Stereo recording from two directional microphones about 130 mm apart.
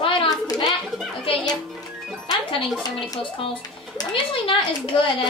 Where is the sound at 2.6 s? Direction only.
Centre (ahead or behind).